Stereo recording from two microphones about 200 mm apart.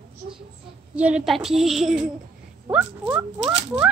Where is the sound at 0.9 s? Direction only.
5° right (ahead or behind).